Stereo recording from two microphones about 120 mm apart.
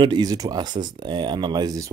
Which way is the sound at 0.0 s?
35° right (ahead or behind).